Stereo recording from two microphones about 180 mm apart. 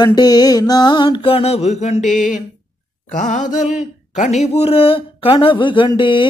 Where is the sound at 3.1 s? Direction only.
45° left (ahead or behind).